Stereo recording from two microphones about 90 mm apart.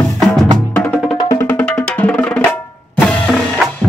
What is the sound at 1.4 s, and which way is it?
Music, 20° left (ahead or behind).